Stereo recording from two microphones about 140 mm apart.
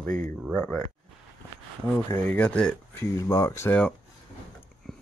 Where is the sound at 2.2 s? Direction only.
10° left (ahead or behind).